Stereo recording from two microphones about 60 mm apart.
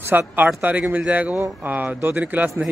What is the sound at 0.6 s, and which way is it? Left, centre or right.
Speech, right.